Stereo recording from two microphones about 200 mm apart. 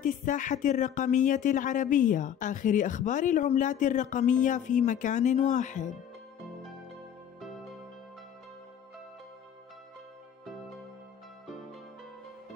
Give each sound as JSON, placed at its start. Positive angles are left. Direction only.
{"t": 0.0, "sound": "speech", "side_deg": 40}
{"t": 7.3, "sound": "music", "side_deg": 0}